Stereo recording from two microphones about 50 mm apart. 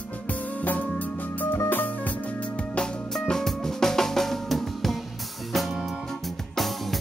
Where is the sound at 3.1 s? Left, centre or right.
Centre.